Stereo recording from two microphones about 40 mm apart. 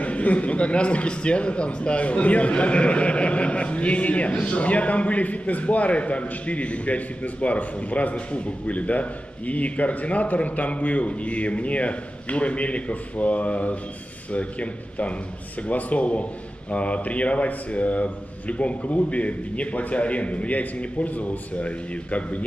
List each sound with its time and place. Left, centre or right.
0.0 s a man's voice: left